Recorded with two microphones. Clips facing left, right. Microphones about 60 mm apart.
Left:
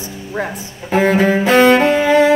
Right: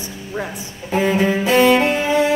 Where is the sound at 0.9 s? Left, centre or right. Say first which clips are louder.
Left 4 dB; left.